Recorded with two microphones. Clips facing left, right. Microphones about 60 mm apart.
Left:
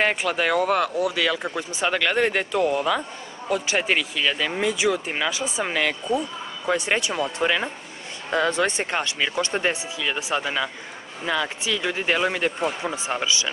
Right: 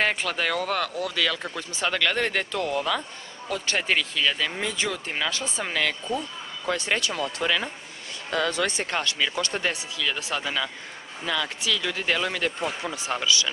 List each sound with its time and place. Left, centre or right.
0.0 s speech: centre